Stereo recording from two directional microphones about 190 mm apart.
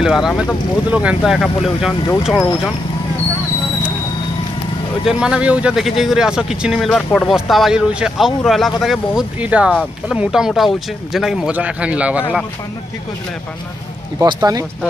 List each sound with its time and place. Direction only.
0.0 s speech: centre (ahead or behind)
5.0 s a man's voice: 5° right (ahead or behind)
14.2 s speech: 20° right (ahead or behind)